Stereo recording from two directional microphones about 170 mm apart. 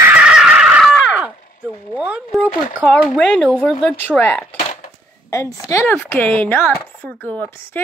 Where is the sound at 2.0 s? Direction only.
10° right (ahead or behind).